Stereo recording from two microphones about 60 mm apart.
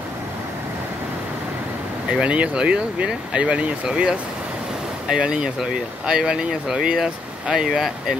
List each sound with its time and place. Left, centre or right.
2.0 s speech: centre